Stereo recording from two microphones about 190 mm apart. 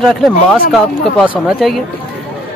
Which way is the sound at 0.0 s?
Centre (ahead or behind).